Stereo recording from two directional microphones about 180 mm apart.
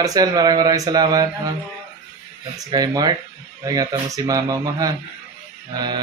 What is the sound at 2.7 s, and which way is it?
A man's voice, 20° right (ahead or behind).